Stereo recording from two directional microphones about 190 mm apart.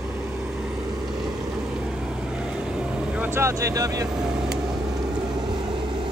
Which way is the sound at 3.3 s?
15° right (ahead or behind).